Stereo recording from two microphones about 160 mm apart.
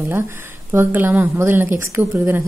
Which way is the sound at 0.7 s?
15° right (ahead or behind).